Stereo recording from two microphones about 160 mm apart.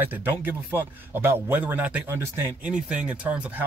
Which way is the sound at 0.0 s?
10° right (ahead or behind).